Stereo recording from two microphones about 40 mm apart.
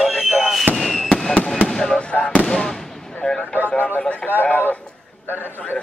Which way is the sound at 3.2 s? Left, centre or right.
Left.